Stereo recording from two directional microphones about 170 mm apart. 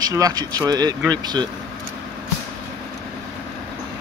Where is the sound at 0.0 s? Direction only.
20° right (ahead or behind).